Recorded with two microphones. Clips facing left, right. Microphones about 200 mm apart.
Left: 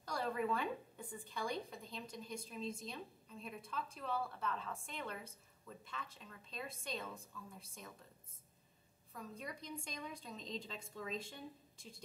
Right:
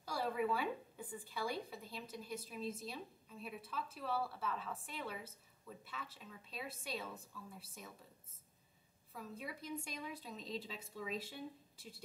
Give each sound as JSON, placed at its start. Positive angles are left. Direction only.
{"t": 0.0, "sound": "a woman's voice", "side_deg": -5}
{"t": 9.1, "sound": "a woman's voice", "side_deg": -5}